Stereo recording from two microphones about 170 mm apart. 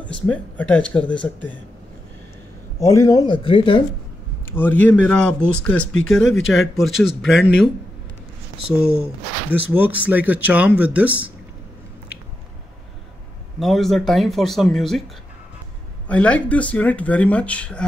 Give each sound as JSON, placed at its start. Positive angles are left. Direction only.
{"t": 0.0, "sound": "speech", "side_deg": 10}
{"t": 2.8, "sound": "a man's voice", "side_deg": 20}
{"t": 4.5, "sound": "speech", "side_deg": 10}
{"t": 8.6, "sound": "speech", "side_deg": -5}
{"t": 13.6, "sound": "speech", "side_deg": 0}
{"t": 16.1, "sound": "speech", "side_deg": 5}